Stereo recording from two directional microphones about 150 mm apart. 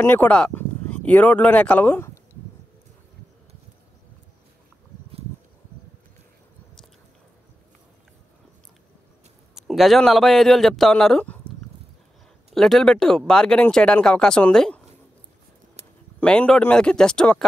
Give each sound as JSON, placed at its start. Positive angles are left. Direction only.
{"t": 0.0, "sound": "speech", "side_deg": 10}
{"t": 9.6, "sound": "speech", "side_deg": 0}
{"t": 12.5, "sound": "speech", "side_deg": 0}
{"t": 16.2, "sound": "speech", "side_deg": 10}